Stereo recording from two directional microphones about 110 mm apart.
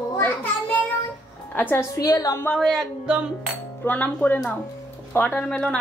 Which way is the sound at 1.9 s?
30° left (ahead or behind).